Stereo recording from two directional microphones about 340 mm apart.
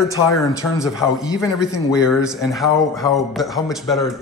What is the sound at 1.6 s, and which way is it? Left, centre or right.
Speech, centre.